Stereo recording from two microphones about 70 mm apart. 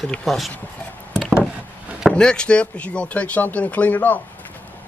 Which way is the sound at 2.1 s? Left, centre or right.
Centre.